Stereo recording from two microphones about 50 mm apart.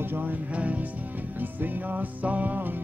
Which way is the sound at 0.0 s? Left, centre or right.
Right.